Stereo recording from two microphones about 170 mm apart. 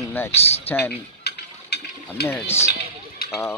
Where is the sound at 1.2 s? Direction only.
75° left (ahead or behind).